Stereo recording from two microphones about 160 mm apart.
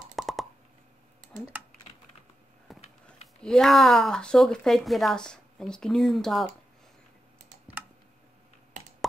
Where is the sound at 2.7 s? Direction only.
Centre (ahead or behind).